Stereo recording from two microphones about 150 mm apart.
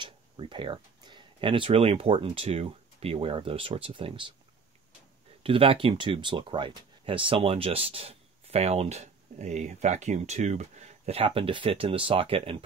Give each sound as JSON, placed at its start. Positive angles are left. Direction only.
{"t": 0.0, "sound": "speech", "side_deg": -35}
{"t": 5.4, "sound": "speech", "side_deg": -35}